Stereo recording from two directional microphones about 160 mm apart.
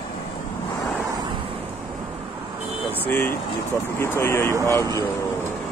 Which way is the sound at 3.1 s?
15° left (ahead or behind).